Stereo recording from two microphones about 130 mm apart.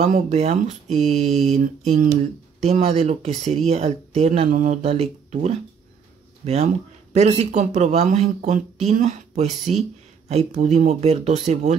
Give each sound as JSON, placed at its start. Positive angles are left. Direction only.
{"t": 0.0, "sound": "speech", "side_deg": -60}
{"t": 4.5, "sound": "speech", "side_deg": -80}
{"t": 4.8, "sound": "speech", "side_deg": -50}